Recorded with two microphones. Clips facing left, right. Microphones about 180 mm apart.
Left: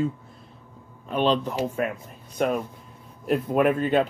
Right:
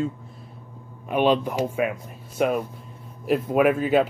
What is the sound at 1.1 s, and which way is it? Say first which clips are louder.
Speech: right 2 dB; 10° right (ahead or behind).